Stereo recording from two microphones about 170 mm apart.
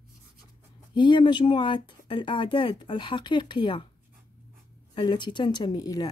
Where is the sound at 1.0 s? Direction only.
25° left (ahead or behind).